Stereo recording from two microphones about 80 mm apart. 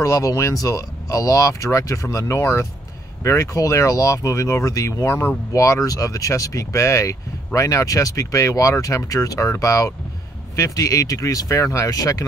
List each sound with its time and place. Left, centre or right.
0.0 s speech: left
5.1 s speech: left
5.5 s speech: left